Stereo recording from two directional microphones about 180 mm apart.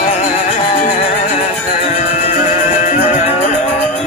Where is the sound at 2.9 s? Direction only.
35° left (ahead or behind).